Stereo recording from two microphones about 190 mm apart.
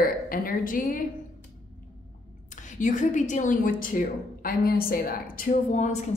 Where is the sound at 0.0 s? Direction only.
50° left (ahead or behind).